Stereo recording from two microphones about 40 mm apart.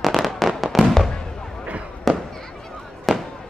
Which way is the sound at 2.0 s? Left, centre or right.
Centre.